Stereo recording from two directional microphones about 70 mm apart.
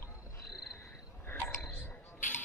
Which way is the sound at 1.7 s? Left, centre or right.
Left.